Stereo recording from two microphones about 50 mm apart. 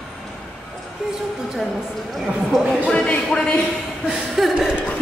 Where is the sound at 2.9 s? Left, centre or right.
Left.